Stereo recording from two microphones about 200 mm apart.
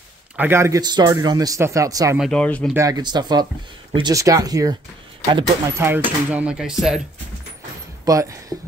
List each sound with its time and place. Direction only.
0.4 s speech: 10° right (ahead or behind)
2.1 s speech: centre (ahead or behind)
2.7 s speech: 15° right (ahead or behind)
5.8 s speech: 10° right (ahead or behind)
8.0 s speech: 15° right (ahead or behind)